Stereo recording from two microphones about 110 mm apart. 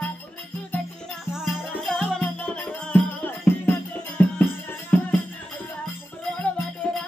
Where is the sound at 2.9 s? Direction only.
15° left (ahead or behind).